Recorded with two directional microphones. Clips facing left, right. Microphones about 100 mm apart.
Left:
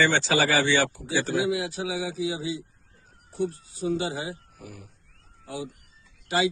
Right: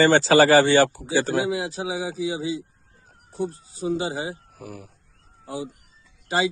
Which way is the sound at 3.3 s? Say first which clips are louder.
Even; 35° right (ahead or behind).